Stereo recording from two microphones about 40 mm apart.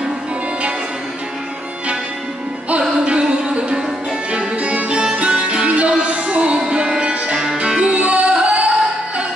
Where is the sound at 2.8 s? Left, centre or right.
Right.